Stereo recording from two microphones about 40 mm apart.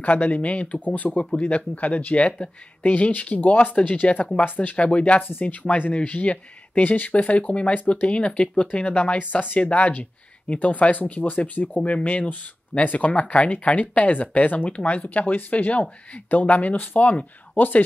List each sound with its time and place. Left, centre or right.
0.0 s speech: left
5.2 s speech: left
9.2 s speech: left
9.6 s speech: left